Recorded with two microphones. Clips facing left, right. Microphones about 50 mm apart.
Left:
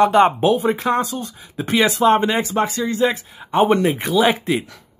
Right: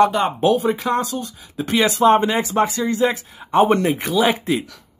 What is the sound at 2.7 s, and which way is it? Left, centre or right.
Speech, centre.